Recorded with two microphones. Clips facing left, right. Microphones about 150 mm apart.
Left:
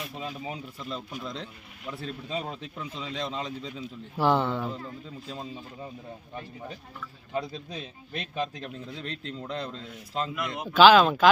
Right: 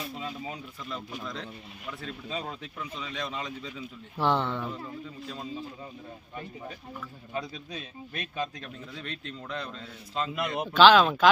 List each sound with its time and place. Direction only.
0.2 s speech: 25° left (ahead or behind)
4.2 s speech: 5° left (ahead or behind)
7.3 s speech: 25° left (ahead or behind)
10.3 s speech: 30° right (ahead or behind)
10.7 s speech: 5° left (ahead or behind)